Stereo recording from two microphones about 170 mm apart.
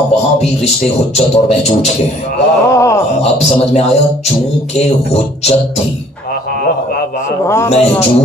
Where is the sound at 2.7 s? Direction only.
15° left (ahead or behind).